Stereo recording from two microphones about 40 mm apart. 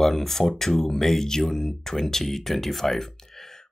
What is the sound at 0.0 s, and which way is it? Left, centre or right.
Speech, centre.